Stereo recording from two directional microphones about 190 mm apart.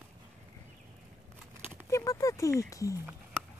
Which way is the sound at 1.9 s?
15° left (ahead or behind).